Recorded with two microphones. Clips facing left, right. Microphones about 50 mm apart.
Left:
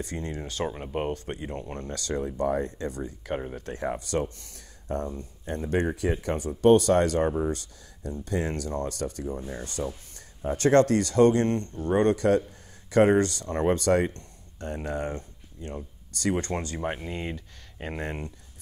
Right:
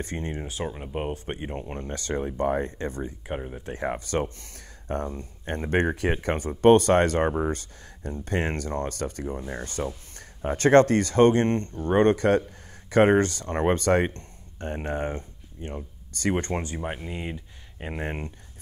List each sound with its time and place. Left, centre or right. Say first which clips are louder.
0.0 s speech: right 2 dB; right
0.4 s speech: left 1 dB; centre
0.7 s speech: left 2 dB; centre
1.1 s speech: right 1 dB; right
16.8 s speech: left 1 dB; centre
18.0 s speech: right 3 dB; right